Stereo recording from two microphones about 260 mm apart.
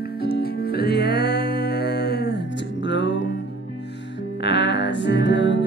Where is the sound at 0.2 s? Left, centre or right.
Left.